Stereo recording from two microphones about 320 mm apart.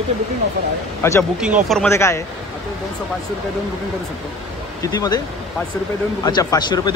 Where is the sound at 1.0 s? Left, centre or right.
Centre.